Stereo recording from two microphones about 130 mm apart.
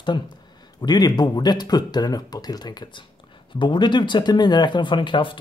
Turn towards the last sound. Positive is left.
turn(degrees=40)  # may be behind; listen again after turning